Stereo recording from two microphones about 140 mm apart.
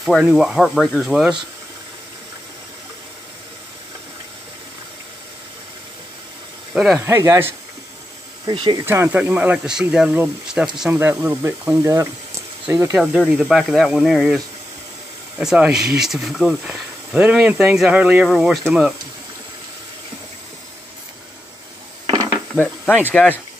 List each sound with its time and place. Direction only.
0.0 s speech: centre (ahead or behind)
6.7 s speech: 5° right (ahead or behind)
7.0 s speech: 20° right (ahead or behind)
8.5 s speech: 30° right (ahead or behind)
8.8 s speech: 15° right (ahead or behind)
12.9 s speech: 5° right (ahead or behind)
22.0 s dishes: 30° right (ahead or behind)
23.1 s speech: 10° left (ahead or behind)